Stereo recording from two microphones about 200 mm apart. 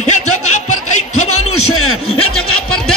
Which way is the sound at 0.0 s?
35° left (ahead or behind).